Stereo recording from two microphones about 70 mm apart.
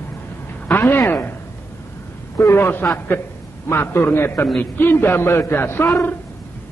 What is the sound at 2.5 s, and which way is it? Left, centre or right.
A man's voice, left.